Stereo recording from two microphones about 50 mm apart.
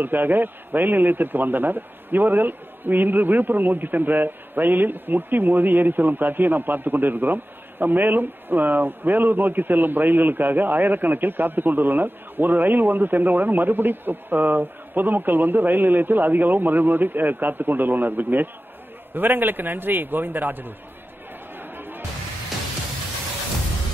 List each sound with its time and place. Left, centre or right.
0.0 s a man's voice: right
21.5 s chatter: right